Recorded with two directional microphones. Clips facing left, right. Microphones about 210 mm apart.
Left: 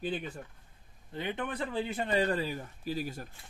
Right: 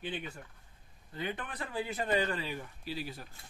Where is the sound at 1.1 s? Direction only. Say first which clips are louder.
Left 4 dB; 25° left (ahead or behind); by 3.3 s 45° left (ahead or behind).